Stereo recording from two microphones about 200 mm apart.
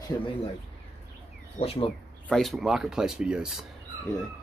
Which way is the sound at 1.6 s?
30° left (ahead or behind).